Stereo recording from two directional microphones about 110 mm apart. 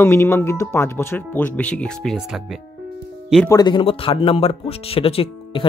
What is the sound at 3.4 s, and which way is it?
Speech, 40° left (ahead or behind).